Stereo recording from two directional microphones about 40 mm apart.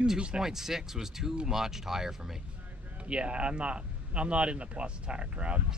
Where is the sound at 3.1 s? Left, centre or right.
Right.